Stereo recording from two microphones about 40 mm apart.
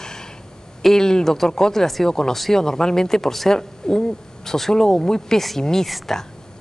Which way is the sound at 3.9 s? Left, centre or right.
Centre.